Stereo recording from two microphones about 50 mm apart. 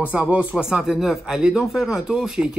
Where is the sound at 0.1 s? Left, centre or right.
Right.